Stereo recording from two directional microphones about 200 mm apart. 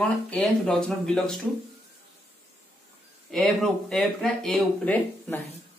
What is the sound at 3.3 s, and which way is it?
Speech, centre (ahead or behind).